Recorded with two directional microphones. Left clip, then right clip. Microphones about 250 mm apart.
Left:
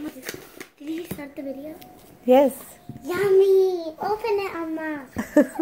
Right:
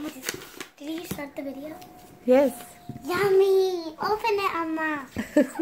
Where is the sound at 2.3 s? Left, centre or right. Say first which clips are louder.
Left 3 dB; centre.